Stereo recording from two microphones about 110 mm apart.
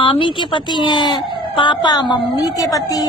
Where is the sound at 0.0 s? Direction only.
50° left (ahead or behind).